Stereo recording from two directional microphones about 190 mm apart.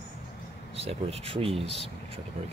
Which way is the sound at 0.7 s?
30° right (ahead or behind).